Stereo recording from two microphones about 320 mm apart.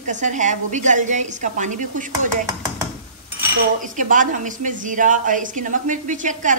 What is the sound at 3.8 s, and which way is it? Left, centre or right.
Speech, right.